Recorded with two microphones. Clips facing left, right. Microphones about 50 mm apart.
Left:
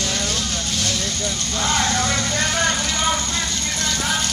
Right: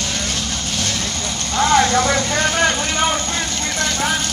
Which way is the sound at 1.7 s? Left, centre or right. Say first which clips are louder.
Right 6 dB; right.